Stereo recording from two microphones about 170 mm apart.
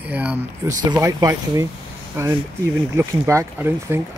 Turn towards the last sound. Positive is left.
turn(degrees=-15)  # may be behind; listen again after turning